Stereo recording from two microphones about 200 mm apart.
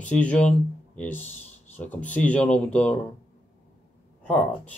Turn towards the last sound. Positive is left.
turn(degrees=5)  # may be behind; listen again after turning